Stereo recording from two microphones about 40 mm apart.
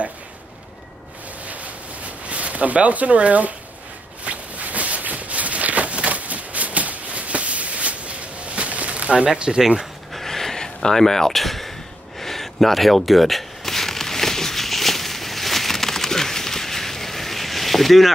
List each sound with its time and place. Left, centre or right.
2.2 s speech: right
4.2 s walk: right
9.3 s speech: right
10.1 s a sound: centre